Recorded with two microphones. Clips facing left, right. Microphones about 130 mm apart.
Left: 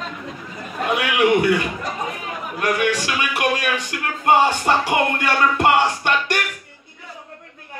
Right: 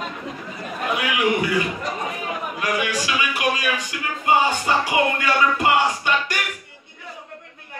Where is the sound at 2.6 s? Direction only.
60° left (ahead or behind).